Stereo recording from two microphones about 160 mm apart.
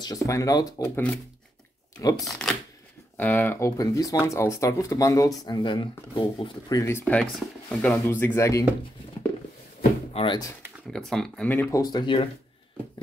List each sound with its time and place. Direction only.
0.0 s speech: 20° left (ahead or behind)
0.8 s speech: 10° left (ahead or behind)
2.0 s speech: 25° left (ahead or behind)
2.2 s speech: centre (ahead or behind); by 6.8 s 30° left (ahead or behind)
6.8 s speech: 15° left (ahead or behind)
10.1 s speech: 30° left (ahead or behind)
10.9 s speech: 5° left (ahead or behind)
11.8 s speech: 25° left (ahead or behind)